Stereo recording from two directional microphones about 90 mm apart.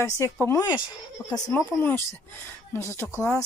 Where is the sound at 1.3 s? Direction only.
45° left (ahead or behind).